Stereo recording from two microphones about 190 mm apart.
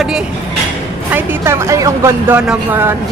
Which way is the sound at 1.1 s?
10° right (ahead or behind).